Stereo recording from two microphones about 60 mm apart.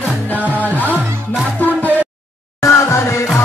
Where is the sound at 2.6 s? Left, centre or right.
Left.